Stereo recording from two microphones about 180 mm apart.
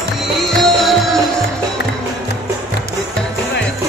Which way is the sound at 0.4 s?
Centre (ahead or behind).